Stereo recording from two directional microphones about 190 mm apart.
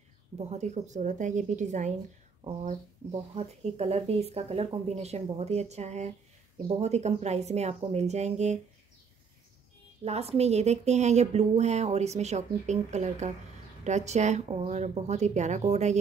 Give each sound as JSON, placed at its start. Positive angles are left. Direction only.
{"t": 0.4, "sound": "speech", "side_deg": -35}
{"t": 10.0, "sound": "speech", "side_deg": -35}